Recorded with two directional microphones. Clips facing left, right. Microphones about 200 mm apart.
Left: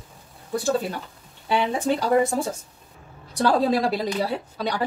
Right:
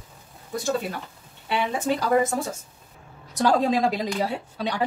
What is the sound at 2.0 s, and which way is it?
Speech, 30° left (ahead or behind).